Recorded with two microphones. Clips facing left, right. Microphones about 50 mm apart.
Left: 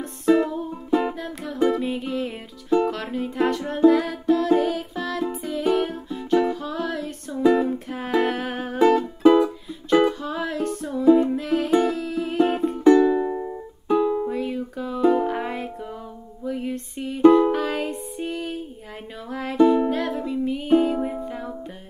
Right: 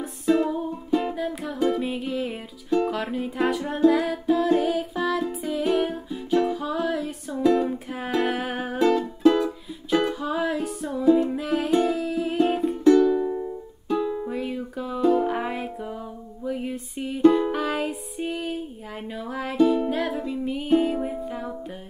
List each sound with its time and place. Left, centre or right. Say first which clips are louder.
0.8 s music: left 3 dB; centre
1.1 s music: right 2 dB; centre
8.8 s music: left 3 dB; centre
12.8 s music: left 2 dB; left
13.2 s music: left 1 dB; left
13.8 s music: left 5 dB; centre
14.3 s music: left 2 dB; centre
15.0 s music: left 1 dB; centre
15.2 s music: even; centre
19.5 s music: left 3 dB; centre